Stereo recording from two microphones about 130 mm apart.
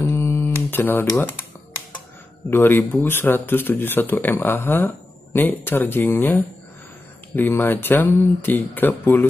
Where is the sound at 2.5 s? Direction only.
15° left (ahead or behind).